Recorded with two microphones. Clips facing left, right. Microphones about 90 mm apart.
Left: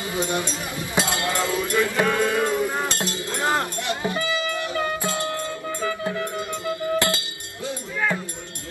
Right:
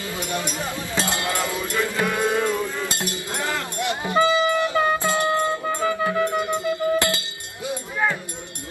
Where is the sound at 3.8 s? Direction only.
20° right (ahead or behind).